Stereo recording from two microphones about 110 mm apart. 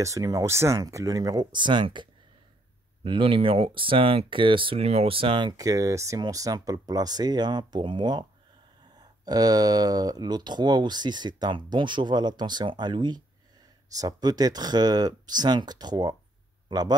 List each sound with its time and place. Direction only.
0.0 s speech: 30° right (ahead or behind)